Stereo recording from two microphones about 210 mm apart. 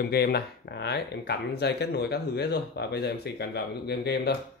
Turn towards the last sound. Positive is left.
turn(degrees=50)  # may be behind; listen again after turning